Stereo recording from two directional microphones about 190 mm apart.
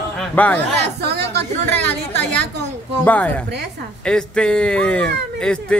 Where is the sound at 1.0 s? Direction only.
60° right (ahead or behind).